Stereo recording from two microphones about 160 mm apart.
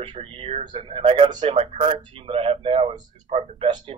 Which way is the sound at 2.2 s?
35° right (ahead or behind).